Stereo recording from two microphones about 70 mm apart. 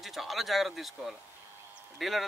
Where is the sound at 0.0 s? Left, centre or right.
Centre.